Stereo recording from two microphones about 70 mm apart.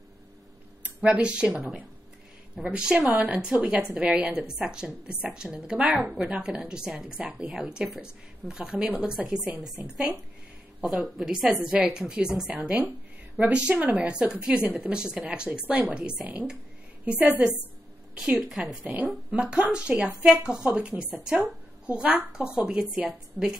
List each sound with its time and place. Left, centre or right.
0.8 s speech: centre
2.5 s a woman's voice: centre
10.8 s a woman's voice: centre